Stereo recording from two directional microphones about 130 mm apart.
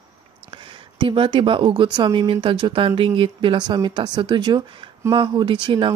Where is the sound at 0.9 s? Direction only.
40° right (ahead or behind).